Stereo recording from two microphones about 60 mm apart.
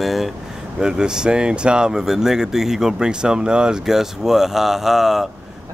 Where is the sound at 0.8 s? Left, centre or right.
Centre.